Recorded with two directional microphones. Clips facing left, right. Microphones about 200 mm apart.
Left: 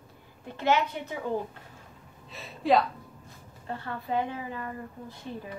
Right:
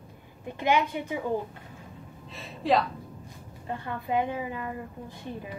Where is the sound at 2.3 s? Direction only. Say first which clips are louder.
Left 1 dB; centre (ahead or behind).